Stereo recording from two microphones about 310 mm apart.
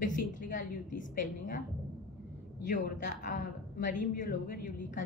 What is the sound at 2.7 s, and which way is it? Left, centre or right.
A woman's voice, left.